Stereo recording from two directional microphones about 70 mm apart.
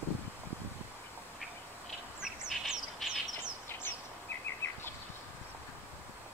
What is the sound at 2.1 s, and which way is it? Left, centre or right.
Bird, centre.